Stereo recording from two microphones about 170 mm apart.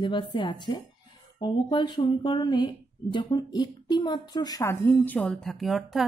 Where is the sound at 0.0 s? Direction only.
30° left (ahead or behind).